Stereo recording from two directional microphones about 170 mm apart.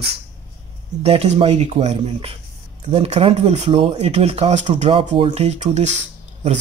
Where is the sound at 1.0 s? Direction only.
35° right (ahead or behind).